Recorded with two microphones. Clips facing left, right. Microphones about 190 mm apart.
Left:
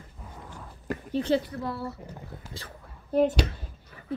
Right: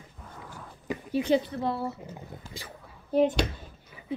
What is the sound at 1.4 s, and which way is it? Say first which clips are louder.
Speech: right 3 dB; 25° right (ahead or behind).